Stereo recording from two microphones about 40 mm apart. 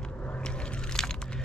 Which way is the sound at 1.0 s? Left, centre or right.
Centre.